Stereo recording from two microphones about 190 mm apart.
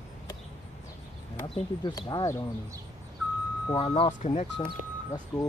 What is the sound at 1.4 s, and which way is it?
Speech, 20° left (ahead or behind).